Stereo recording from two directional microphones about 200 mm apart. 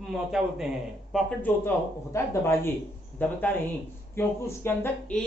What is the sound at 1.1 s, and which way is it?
A man's voice, 10° left (ahead or behind).